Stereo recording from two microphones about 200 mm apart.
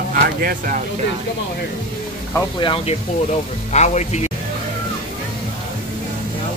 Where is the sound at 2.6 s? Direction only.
30° left (ahead or behind).